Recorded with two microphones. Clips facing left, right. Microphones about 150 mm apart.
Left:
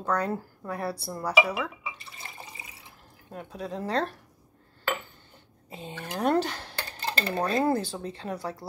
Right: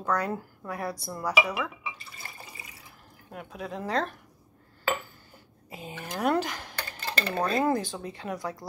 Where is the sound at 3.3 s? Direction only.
30° left (ahead or behind).